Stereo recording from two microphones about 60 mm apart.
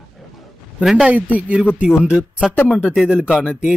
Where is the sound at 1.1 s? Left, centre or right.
Right.